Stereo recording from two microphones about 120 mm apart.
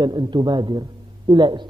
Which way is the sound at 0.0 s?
40° right (ahead or behind).